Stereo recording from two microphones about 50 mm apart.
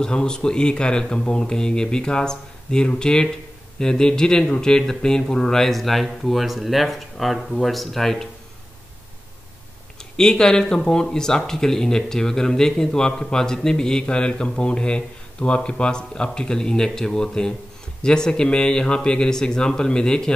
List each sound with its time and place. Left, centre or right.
0.0 s speech: centre
10.1 s speech: centre